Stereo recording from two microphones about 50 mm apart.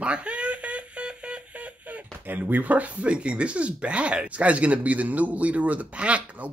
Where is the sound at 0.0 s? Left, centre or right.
Right.